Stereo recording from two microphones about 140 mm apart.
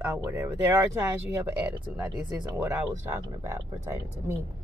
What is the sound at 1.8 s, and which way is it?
Speech, 10° right (ahead or behind).